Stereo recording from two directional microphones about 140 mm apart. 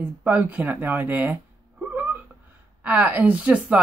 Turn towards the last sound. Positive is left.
turn(degrees=-10)  # may be behind; listen again after turning